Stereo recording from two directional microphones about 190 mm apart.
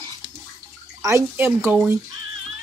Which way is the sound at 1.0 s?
10° right (ahead or behind).